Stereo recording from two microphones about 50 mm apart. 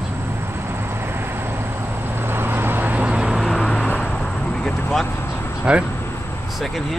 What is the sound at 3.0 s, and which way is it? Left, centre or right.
Vehicle, centre.